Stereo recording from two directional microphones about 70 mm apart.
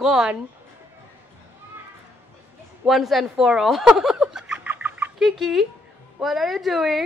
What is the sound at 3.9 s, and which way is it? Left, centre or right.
Snicker, centre.